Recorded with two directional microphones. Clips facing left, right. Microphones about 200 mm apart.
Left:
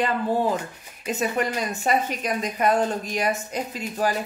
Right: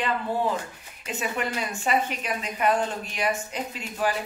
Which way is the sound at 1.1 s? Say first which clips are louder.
Left 4 dB; 40° left (ahead or behind).